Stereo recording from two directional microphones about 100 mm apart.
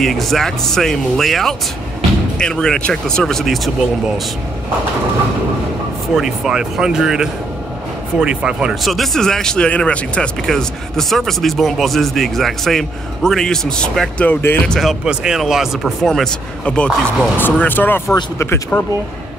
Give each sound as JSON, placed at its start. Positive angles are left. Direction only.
{"t": 0.0, "sound": "speech", "side_deg": 0}
{"t": 6.1, "sound": "speech", "side_deg": -5}
{"t": 14.2, "sound": "speech", "side_deg": 20}
{"t": 14.7, "sound": "speech", "side_deg": 0}